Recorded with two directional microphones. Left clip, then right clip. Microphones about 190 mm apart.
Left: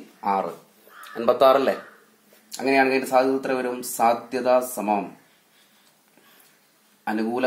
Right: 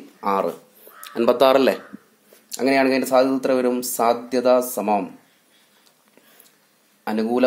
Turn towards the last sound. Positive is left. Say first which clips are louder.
# right 4 dB
turn(degrees=-55)  # may be behind; listen again after turning